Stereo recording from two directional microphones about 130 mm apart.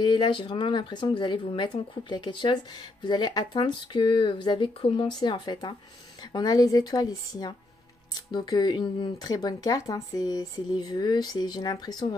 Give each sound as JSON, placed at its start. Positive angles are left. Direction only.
{"t": 0.0, "sound": "a woman's voice", "side_deg": 35}